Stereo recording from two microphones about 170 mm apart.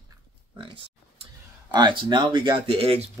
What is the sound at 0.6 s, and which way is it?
Pig, 30° right (ahead or behind).